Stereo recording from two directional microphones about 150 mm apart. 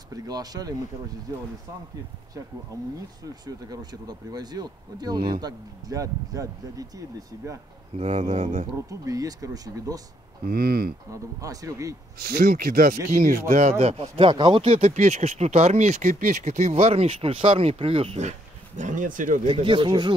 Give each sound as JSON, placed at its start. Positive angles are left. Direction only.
{"t": 0.1, "sound": "speech", "side_deg": -25}
{"t": 2.7, "sound": "speech", "side_deg": -25}
{"t": 8.0, "sound": "speech", "side_deg": -50}
{"t": 8.7, "sound": "speech", "side_deg": -20}
{"t": 10.4, "sound": "speech", "side_deg": -90}
{"t": 11.1, "sound": "speech", "side_deg": -20}
{"t": 12.2, "sound": "speech", "side_deg": -85}
{"t": 13.1, "sound": "speech", "side_deg": -65}
{"t": 18.8, "sound": "speech", "side_deg": -60}
{"t": 19.4, "sound": "speech", "side_deg": -35}